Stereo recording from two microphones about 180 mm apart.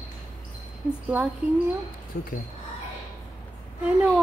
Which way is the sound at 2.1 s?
55° left (ahead or behind).